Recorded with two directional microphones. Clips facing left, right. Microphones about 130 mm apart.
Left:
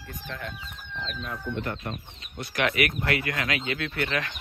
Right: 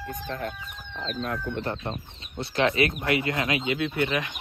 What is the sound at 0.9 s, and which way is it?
Speech, 45° right (ahead or behind).